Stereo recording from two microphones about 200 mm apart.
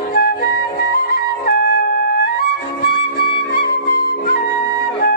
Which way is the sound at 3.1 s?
55° left (ahead or behind).